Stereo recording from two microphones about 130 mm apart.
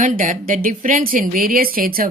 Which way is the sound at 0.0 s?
90° right.